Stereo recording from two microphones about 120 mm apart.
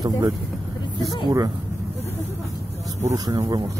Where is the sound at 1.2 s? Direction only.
30° right (ahead or behind).